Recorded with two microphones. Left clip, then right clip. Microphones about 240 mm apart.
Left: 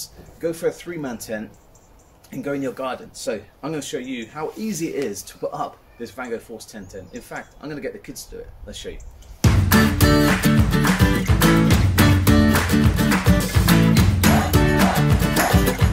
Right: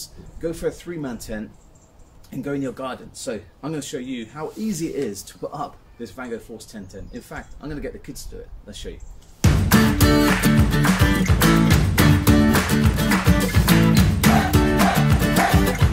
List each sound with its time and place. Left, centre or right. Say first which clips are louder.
0.0 s speech: left 3 dB; centre
9.4 s music: left 1 dB; centre